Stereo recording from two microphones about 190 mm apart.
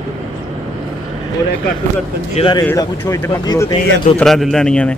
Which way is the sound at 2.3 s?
25° left (ahead or behind).